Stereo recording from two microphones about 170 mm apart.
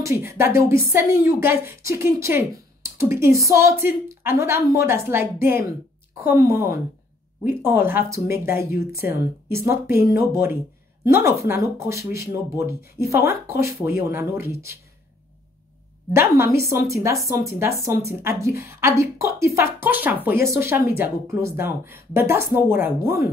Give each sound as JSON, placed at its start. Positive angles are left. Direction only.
{"t": 0.0, "sound": "a woman's voice", "side_deg": -15}
{"t": 16.1, "sound": "a woman's voice", "side_deg": -15}